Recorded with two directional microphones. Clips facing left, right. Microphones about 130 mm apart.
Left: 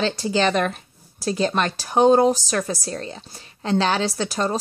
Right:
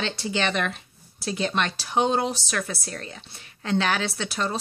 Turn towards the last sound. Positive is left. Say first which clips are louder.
# left 5 dB
turn(degrees=40)  # may be behind; listen again after turning